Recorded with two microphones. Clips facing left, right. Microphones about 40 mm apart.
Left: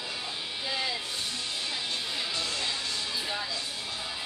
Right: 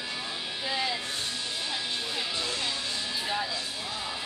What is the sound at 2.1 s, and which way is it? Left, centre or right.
Music, centre.